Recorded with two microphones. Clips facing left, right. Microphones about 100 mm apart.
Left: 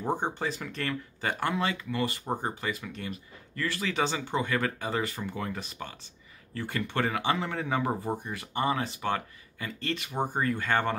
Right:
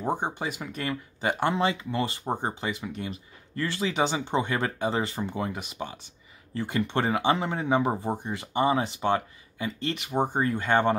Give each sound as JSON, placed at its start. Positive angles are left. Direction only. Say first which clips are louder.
{"t": 0.0, "sound": "speech", "louder": "right 1 dB", "side_deg": -15}